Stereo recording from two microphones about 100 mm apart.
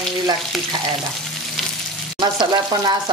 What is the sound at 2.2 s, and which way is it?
Frying, 45° right (ahead or behind).